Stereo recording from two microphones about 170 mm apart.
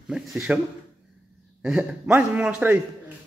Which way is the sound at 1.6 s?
10° right (ahead or behind).